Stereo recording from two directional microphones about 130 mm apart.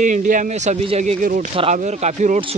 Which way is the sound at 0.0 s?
85° right.